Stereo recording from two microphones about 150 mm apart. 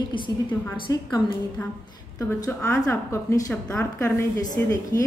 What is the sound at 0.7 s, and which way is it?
Speech, 30° left (ahead or behind).